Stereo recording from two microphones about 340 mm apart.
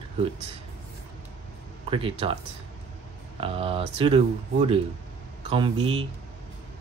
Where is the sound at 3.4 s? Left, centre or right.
Centre.